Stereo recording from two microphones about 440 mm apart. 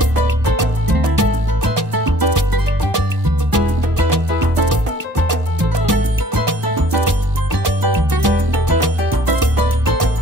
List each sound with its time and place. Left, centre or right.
0.6 s music: right
5.9 s music: right
7.6 s music: right